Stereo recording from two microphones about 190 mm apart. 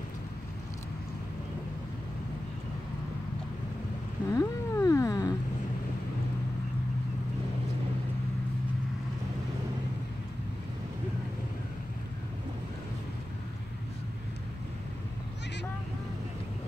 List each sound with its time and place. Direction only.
4.4 s cat: 15° left (ahead or behind)